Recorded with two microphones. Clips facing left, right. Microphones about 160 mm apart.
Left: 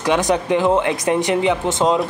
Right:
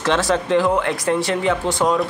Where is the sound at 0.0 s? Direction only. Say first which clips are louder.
Left 1 dB; 15° left (ahead or behind).